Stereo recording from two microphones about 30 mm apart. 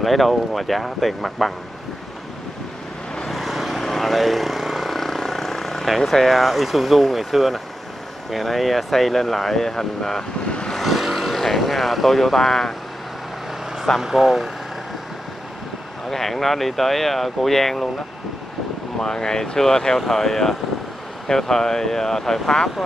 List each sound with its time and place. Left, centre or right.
0.0 s speech: centre
3.3 s vehicle: centre
5.0 s vehicle: centre
5.9 s speech: centre
10.8 s vehicle: centre
11.1 s vehicle: centre
11.3 s vehicle: centre
11.6 s speech: centre
14.0 s speech: centre
16.1 s speech: centre
18.9 s speech: centre